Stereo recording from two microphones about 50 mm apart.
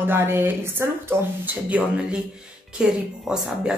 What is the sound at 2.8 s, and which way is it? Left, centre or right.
Speech, centre.